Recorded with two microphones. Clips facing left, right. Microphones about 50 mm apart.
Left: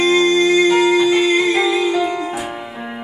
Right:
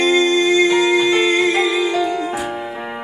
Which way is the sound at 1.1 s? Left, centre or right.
Centre.